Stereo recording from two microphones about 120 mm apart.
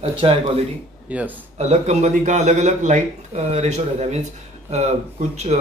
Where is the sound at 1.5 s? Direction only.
65° right (ahead or behind).